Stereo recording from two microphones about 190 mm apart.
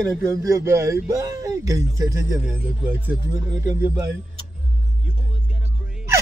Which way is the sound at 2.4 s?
5° right (ahead or behind).